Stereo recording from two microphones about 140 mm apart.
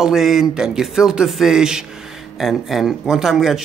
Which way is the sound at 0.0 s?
Centre (ahead or behind).